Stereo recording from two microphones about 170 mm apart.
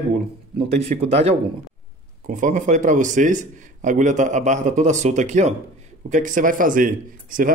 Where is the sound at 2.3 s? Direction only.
50° right (ahead or behind).